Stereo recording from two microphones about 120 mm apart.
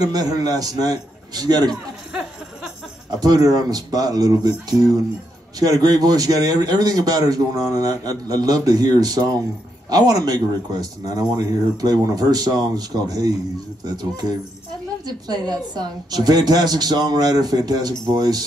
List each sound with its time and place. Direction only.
0.0 s speech: 30° right (ahead or behind)
3.2 s speech: 30° right (ahead or behind)